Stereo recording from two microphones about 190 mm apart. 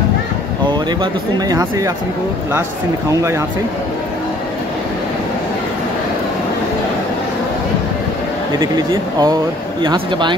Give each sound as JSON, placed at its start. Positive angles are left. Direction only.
{"t": 1.5, "sound": "speech", "side_deg": -20}
{"t": 8.5, "sound": "speech", "side_deg": -20}